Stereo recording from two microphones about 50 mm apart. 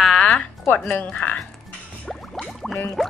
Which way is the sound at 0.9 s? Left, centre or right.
Left.